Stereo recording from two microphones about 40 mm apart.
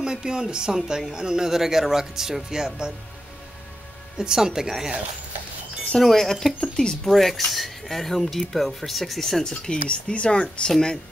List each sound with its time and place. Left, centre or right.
0.0 s speech: centre
4.2 s speech: centre
5.9 s speech: centre
6.6 s speech: left
7.1 s speech: centre
9.4 s speech: centre